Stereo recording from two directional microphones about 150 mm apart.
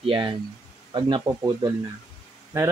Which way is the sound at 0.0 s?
35° right (ahead or behind).